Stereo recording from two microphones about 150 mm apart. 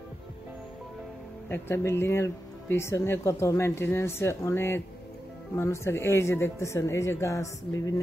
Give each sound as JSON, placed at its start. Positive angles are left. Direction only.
{"t": 1.5, "sound": "speech", "side_deg": 15}